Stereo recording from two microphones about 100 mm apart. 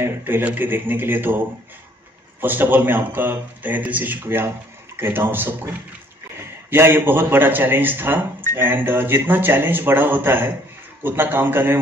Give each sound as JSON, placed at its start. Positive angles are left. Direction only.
{"t": 0.0, "sound": "speech", "side_deg": -20}
{"t": 2.4, "sound": "speech", "side_deg": -20}